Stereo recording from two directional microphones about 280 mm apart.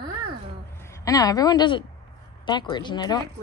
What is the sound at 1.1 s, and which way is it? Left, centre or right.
A woman's voice, centre.